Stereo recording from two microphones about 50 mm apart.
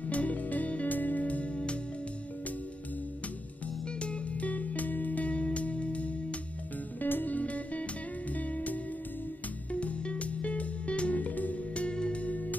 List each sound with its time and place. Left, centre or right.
0.1 s music: left
4.0 s music: left
7.0 s music: left